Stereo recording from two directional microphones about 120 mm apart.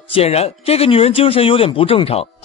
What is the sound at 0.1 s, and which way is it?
Speech, 60° left (ahead or behind).